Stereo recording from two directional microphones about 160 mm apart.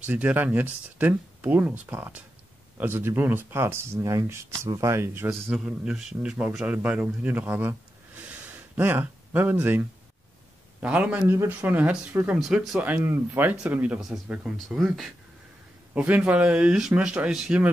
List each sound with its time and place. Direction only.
0.0 s speech: 10° right (ahead or behind)
5.3 s speech: centre (ahead or behind)
8.7 s speech: 15° right (ahead or behind)